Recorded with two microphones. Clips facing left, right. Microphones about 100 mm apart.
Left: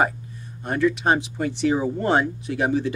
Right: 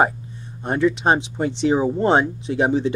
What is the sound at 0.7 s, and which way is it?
Speech, 25° right (ahead or behind).